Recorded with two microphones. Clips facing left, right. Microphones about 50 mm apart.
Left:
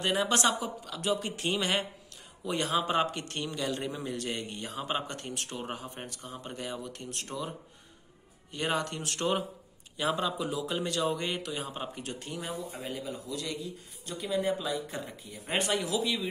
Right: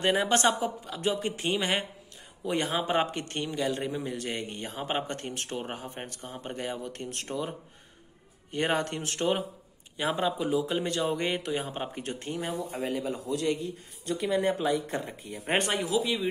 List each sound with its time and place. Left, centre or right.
0.0 s speech: right
2.5 s speech: right
3.4 s a man's voice: centre; by 12.4 s right
12.5 s speech: right
15.7 s speech: right
16.0 s speech: centre